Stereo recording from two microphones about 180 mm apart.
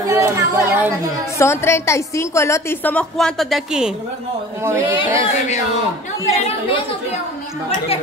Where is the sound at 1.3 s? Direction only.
15° left (ahead or behind); by 3.9 s 5° right (ahead or behind).